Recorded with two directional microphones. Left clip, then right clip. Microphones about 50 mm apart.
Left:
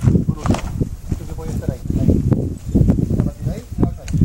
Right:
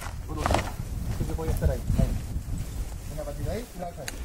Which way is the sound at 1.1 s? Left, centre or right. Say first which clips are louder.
Left 6 dB; centre.